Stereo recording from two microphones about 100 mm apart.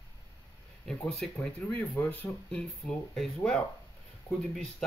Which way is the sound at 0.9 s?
5° left (ahead or behind).